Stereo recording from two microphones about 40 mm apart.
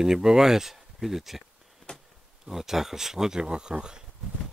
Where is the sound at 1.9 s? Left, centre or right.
Left.